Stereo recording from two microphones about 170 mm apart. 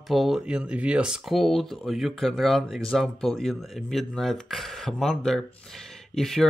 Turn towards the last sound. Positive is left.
turn(degrees=0)  # may be behind; listen again after turning